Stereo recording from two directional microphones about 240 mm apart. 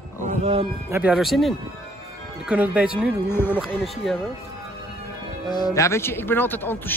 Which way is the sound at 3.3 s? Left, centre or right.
Centre.